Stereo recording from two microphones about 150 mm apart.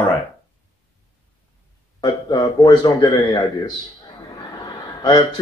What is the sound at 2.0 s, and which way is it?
A man's voice, 30° left (ahead or behind).